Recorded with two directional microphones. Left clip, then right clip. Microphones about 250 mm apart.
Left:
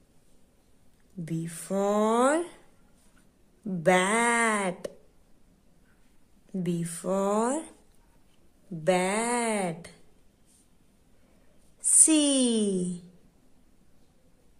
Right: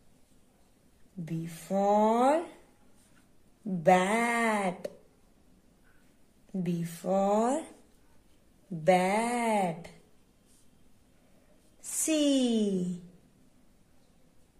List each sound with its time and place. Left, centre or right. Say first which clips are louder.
1.2 s speech: left 4 dB; centre
3.6 s speech: left 1 dB; centre
6.5 s speech: left 3 dB; centre
8.8 s speech: even; centre
11.8 s speech: left 5 dB; centre